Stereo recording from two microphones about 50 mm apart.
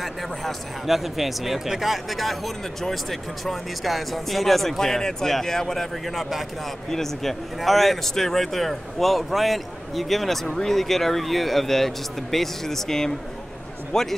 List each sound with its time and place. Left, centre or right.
0.0 s speech: centre